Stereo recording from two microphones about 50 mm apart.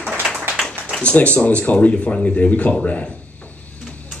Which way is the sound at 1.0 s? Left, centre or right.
Left.